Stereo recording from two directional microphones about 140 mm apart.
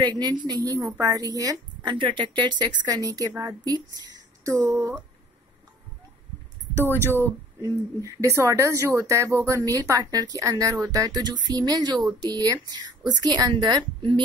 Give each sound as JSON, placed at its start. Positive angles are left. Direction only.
{"t": 0.0, "sound": "a woman's voice", "side_deg": -30}
{"t": 7.1, "sound": "speech", "side_deg": -15}